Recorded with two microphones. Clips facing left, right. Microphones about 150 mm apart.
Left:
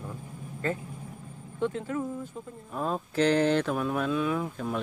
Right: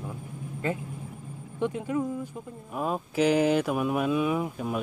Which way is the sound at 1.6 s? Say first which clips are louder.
Right 2 dB; 15° right (ahead or behind).